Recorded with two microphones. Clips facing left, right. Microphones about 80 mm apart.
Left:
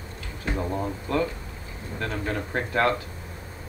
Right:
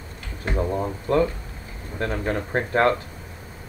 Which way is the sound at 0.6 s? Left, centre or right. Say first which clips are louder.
Right 4 dB; centre.